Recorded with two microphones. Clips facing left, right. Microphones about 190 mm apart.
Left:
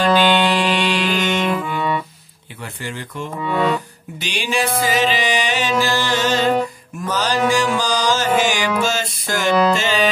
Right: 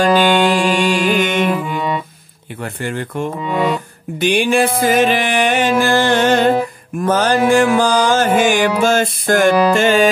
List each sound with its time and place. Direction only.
0.0 s music: 45° right (ahead or behind)
1.4 s music: 15° right (ahead or behind)
2.6 s music: 55° right (ahead or behind)
3.3 s speech: 15° right (ahead or behind)
4.2 s music: 55° right (ahead or behind)